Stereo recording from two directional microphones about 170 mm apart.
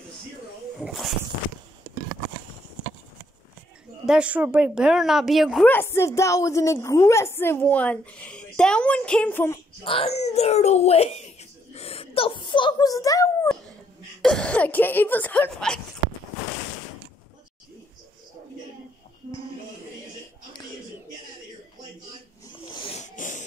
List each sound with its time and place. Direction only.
0.8 s speech: centre (ahead or behind)
4.0 s speech: 5° right (ahead or behind)
5.7 s a woman's voice: 15° left (ahead or behind)
9.8 s a child's voice: 35° left (ahead or behind)
11.7 s whimper: 35° left (ahead or behind); by 13.5 s 20° left (ahead or behind)
14.2 s a woman's voice: 5° left (ahead or behind)
22.9 s a sound: 50° left (ahead or behind)